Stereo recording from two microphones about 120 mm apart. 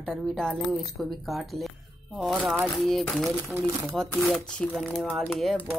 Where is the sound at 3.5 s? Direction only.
20° right (ahead or behind).